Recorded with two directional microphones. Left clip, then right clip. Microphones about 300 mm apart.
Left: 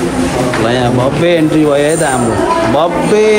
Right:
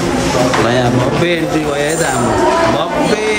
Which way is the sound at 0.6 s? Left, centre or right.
Centre.